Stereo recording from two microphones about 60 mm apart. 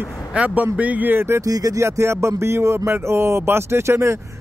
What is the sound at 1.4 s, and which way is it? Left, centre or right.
Speech, right.